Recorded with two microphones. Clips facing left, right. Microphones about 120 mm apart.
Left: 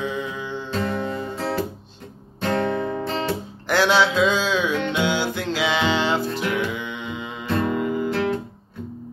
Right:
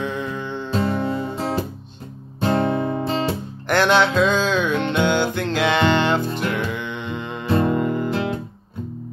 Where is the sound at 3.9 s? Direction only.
55° right (ahead or behind).